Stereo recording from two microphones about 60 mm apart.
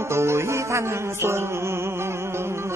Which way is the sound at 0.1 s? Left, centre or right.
Right.